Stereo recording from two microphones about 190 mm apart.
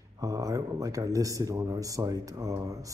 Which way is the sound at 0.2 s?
20° right (ahead or behind).